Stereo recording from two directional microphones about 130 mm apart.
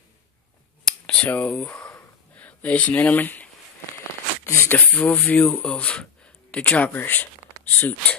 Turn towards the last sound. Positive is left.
turn(degrees=15)  # may be behind; listen again after turning